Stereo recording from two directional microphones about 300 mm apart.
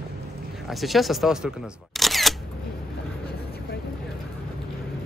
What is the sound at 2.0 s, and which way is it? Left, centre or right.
Single-lens reflex camera, centre.